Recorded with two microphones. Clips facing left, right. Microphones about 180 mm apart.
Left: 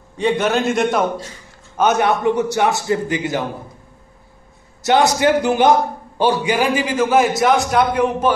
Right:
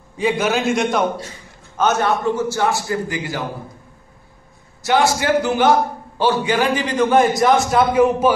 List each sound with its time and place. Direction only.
0.2 s a man's voice: centre (ahead or behind)
1.8 s a man's voice: 15° left (ahead or behind)
4.8 s a man's voice: 20° left (ahead or behind); by 8.3 s 5° right (ahead or behind)